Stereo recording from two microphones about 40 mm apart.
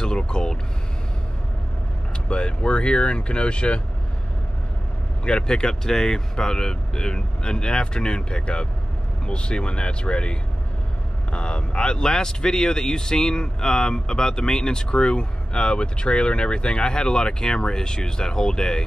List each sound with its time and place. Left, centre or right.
0.0 s vehicle: centre
2.2 s a man's voice: left
5.2 s a man's voice: left